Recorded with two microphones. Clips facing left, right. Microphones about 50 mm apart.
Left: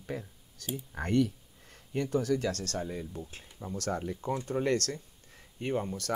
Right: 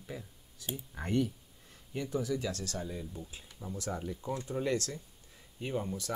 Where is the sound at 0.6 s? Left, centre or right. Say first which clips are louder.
Left 4 dB; left.